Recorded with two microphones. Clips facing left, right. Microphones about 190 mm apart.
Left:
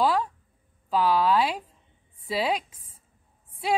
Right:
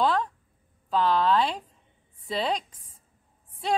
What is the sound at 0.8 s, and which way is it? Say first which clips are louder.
A woman's voice: left 1 dB; 10° left (ahead or behind).